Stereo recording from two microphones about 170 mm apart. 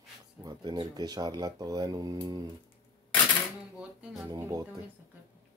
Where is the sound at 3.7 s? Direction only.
5° right (ahead or behind).